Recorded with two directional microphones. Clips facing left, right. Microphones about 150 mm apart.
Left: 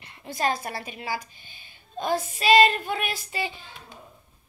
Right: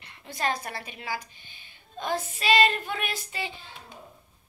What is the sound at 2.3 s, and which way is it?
Child singing, 35° left (ahead or behind).